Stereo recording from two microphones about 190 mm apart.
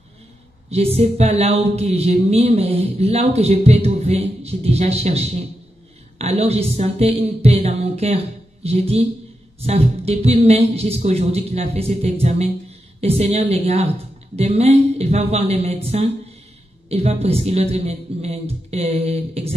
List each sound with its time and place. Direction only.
0.7 s a woman's voice: 35° right (ahead or behind)